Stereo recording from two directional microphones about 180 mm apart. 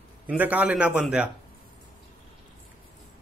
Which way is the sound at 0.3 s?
10° right (ahead or behind).